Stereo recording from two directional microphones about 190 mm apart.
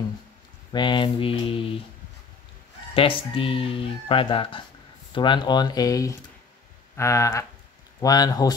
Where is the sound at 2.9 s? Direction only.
30° left (ahead or behind).